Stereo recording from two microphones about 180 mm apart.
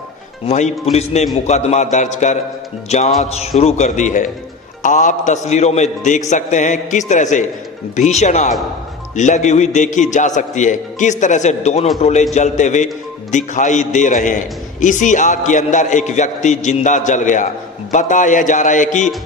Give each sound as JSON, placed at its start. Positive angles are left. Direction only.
{"t": 0.5, "sound": "a man's voice", "side_deg": 40}